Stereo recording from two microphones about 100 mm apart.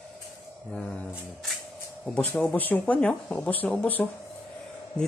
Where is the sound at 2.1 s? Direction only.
15° left (ahead or behind).